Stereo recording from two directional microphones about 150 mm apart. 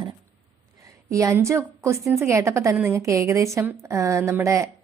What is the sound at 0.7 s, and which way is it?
A woman's voice, 20° right (ahead or behind).